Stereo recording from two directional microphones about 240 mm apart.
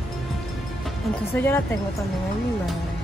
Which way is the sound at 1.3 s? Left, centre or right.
Centre.